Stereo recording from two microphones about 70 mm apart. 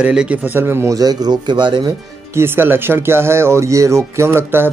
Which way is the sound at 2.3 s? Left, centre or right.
Right.